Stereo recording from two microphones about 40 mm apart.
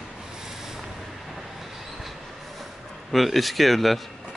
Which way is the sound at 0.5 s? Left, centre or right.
Centre.